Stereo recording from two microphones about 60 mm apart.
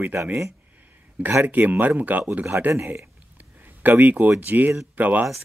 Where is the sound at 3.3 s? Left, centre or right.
Right.